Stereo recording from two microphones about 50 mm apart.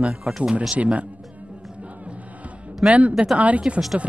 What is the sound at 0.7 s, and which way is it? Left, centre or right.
Speech, right.